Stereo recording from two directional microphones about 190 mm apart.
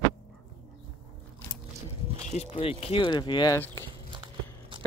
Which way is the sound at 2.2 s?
35° left (ahead or behind).